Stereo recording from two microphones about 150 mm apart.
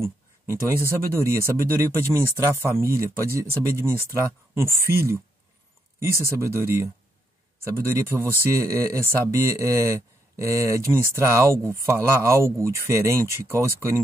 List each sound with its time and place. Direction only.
0.0 s speech: 15° right (ahead or behind)
6.3 s speech: 20° right (ahead or behind)